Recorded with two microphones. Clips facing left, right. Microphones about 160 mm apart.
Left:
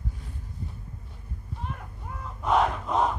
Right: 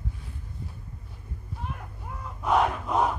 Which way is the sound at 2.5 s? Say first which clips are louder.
Even; 5° right (ahead or behind).